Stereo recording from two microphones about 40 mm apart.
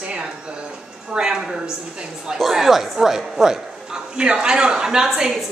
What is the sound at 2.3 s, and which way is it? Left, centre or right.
A man's voice, centre.